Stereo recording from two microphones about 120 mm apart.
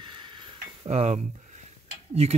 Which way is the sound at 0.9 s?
65° right (ahead or behind).